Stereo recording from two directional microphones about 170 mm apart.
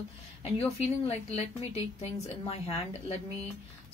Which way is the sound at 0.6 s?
35° left (ahead or behind).